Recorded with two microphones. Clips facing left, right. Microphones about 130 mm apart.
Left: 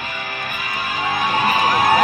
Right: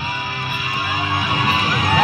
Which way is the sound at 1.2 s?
45° left (ahead or behind).